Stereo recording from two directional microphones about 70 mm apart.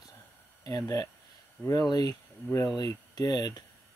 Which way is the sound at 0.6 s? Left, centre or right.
Left.